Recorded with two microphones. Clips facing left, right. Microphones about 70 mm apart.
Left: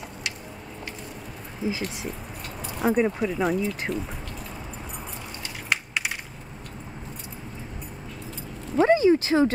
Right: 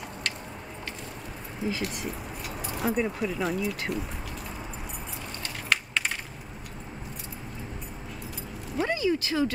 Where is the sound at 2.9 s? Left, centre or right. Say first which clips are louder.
Left 5 dB; centre.